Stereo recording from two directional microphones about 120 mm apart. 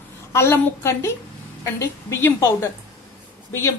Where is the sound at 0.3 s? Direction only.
20° left (ahead or behind).